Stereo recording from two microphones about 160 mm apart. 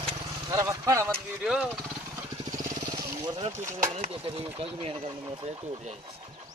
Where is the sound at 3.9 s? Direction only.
40° right (ahead or behind).